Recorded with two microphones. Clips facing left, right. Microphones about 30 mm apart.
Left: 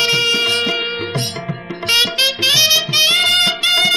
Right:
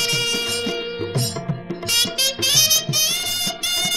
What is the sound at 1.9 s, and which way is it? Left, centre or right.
Music, left.